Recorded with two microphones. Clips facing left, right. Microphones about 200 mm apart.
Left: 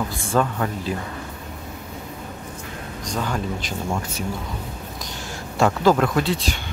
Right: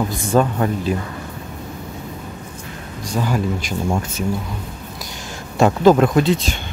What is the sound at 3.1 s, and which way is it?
Speech, 10° right (ahead or behind).